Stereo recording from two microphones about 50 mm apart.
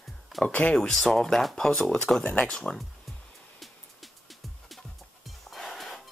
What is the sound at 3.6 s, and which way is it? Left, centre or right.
Music, centre.